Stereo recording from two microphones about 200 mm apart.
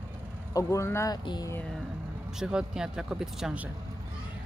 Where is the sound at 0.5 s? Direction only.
15° left (ahead or behind).